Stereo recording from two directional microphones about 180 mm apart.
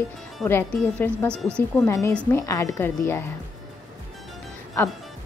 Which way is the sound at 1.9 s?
15° left (ahead or behind).